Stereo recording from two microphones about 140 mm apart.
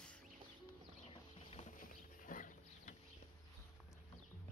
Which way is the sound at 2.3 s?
70° left (ahead or behind).